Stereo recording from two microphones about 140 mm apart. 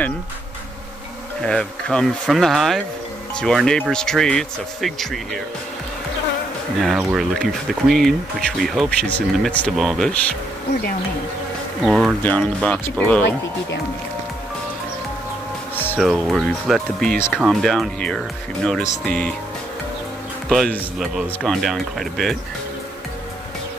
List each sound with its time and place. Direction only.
1.4 s speech: 5° left (ahead or behind)
6.8 s speech: 5° right (ahead or behind)
11.8 s speech: centre (ahead or behind)
12.2 s speech: 10° left (ahead or behind)
15.7 s music: 15° left (ahead or behind)
16.0 s speech: centre (ahead or behind)
20.4 s speech: centre (ahead or behind)